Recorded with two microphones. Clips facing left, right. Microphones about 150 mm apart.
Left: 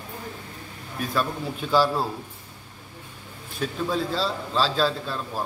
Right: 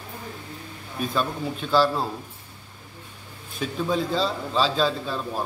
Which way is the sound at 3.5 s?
Centre (ahead or behind).